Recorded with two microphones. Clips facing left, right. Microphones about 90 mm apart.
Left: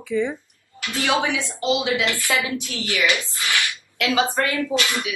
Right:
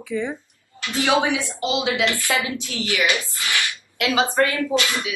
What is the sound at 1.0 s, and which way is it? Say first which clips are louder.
A woman's voice: right 2 dB; 20° right (ahead or behind).